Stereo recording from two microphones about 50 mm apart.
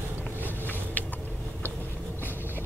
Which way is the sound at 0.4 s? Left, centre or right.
Left.